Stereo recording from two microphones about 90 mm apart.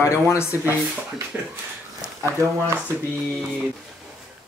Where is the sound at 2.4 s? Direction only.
35° right (ahead or behind).